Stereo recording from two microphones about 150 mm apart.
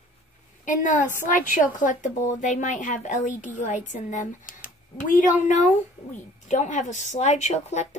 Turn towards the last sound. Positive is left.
turn(degrees=50)  # may be behind; listen again after turning